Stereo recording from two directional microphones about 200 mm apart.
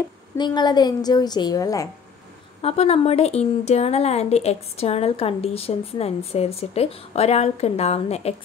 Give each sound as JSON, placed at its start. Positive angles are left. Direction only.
{"t": 0.4, "sound": "a woman's voice", "side_deg": 20}
{"t": 2.6, "sound": "speech", "side_deg": 30}